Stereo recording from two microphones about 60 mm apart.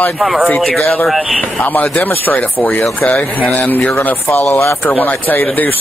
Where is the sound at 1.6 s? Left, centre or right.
Left.